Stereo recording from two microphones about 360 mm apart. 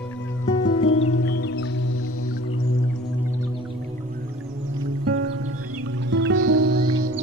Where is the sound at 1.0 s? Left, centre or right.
Left.